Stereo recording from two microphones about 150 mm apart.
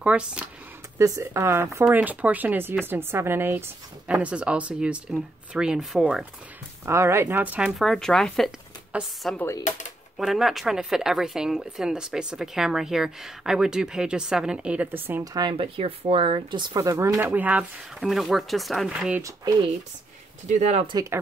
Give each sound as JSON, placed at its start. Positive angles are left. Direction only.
{"t": 0.0, "sound": "speech", "side_deg": -10}
{"t": 0.9, "sound": "speech", "side_deg": -20}
{"t": 6.9, "sound": "speech", "side_deg": -20}
{"t": 9.4, "sound": "speech", "side_deg": 20}
{"t": 9.7, "sound": "typewriter", "side_deg": 55}
{"t": 10.1, "sound": "speech", "side_deg": 0}
{"t": 15.3, "sound": "speech", "side_deg": -35}
{"t": 17.2, "sound": "speech", "side_deg": -10}
{"t": 20.4, "sound": "speech", "side_deg": -50}
{"t": 20.9, "sound": "speech", "side_deg": -20}